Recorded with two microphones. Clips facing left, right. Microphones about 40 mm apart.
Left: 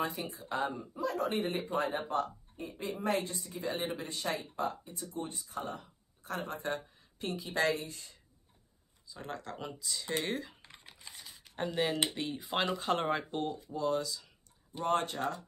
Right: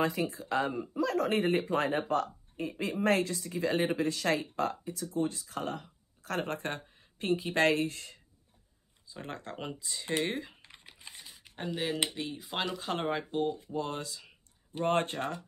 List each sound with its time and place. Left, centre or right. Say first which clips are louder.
0.0 s speech: right 6 dB; right
5.1 s speech: right 7 dB; right
9.0 s speech: right 1 dB; right
10.7 s typing: right 1 dB; centre
11.2 s a sound: right 1 dB; centre
11.5 s speech: left 2 dB; centre
13.7 s speech: left 3 dB; right